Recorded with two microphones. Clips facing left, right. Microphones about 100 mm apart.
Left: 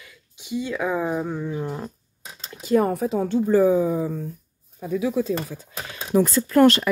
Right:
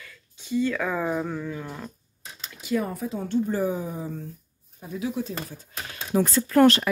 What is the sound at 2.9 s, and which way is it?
Speech, 80° left.